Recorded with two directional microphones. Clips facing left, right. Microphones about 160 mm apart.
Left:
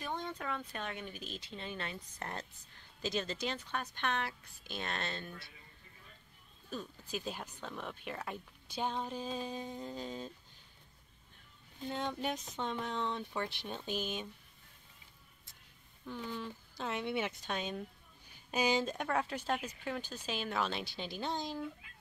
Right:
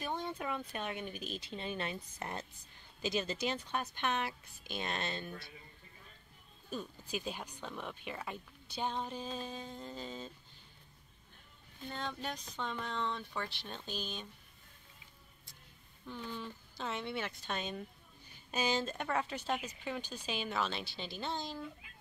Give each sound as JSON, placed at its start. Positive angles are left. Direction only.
{"t": 0.0, "sound": "speech", "side_deg": -10}
{"t": 6.7, "sound": "speech", "side_deg": -5}
{"t": 11.9, "sound": "speech", "side_deg": 15}
{"t": 16.1, "sound": "speech", "side_deg": 0}
{"t": 19.5, "sound": "speech", "side_deg": -5}
{"t": 21.2, "sound": "speech", "side_deg": 15}